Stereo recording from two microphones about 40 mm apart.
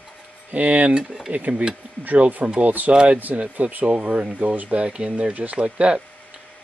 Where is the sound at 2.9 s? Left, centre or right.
Right.